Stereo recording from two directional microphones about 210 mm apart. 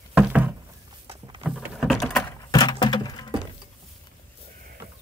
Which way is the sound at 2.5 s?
20° left (ahead or behind).